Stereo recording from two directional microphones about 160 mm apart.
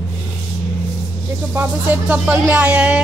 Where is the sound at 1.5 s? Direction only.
10° right (ahead or behind).